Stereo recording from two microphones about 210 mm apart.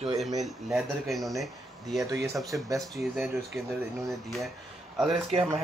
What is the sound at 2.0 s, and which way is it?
Speech, 15° right (ahead or behind).